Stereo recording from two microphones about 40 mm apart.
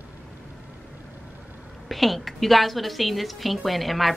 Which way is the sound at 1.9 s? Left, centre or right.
Centre.